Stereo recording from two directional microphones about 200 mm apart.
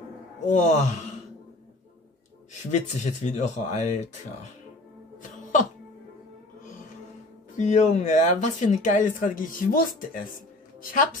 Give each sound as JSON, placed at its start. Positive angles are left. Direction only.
{"t": 0.5, "sound": "speech", "side_deg": 35}
{"t": 2.7, "sound": "speech", "side_deg": 35}
{"t": 7.5, "sound": "a woman's voice", "side_deg": 35}